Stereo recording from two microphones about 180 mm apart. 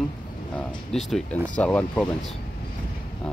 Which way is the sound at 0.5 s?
Centre (ahead or behind).